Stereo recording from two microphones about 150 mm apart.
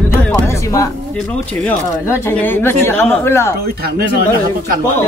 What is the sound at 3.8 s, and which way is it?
Speech, 85° right.